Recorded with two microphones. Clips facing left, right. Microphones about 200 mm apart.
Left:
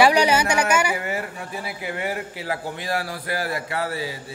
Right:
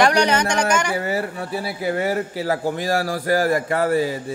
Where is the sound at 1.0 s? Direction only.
35° right (ahead or behind).